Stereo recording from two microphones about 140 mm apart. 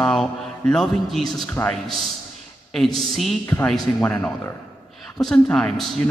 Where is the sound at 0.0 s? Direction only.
5° left (ahead or behind).